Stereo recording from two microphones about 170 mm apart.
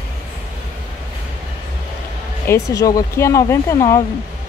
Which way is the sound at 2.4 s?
15° left (ahead or behind).